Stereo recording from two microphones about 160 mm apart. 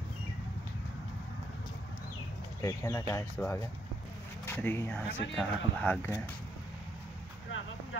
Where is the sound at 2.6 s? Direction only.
20° left (ahead or behind).